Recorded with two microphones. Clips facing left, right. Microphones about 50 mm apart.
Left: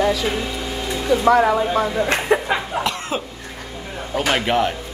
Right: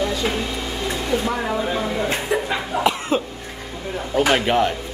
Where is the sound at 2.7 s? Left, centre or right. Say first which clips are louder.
Right 6 dB; left.